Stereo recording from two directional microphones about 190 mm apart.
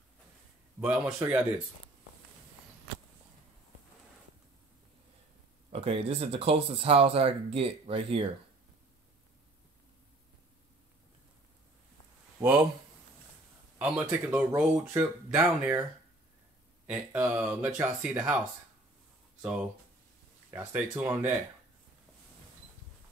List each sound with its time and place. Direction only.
0.7 s speech: 5° right (ahead or behind)
5.7 s speech: 30° right (ahead or behind)
12.4 s speech: 10° right (ahead or behind)
13.7 s speech: 5° right (ahead or behind)
16.8 s speech: 5° right (ahead or behind)
20.5 s speech: 10° right (ahead or behind)